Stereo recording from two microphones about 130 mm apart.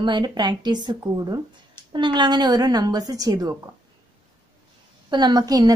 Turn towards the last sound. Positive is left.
turn(degrees=-30)  # may be behind; listen again after turning